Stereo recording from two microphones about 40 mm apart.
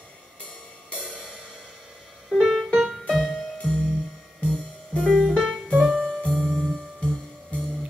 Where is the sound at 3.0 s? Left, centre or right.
Centre.